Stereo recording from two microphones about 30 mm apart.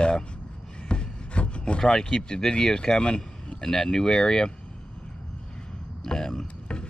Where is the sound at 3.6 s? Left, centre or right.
Centre.